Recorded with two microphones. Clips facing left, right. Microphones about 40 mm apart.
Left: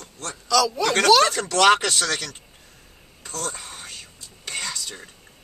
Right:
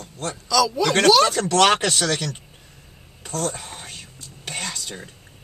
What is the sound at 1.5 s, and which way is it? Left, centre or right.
Speech, right.